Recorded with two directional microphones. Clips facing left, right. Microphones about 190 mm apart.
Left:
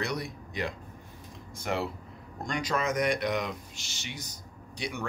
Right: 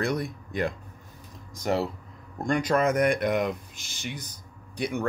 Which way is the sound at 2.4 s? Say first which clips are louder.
Right 7 dB; 55° right (ahead or behind).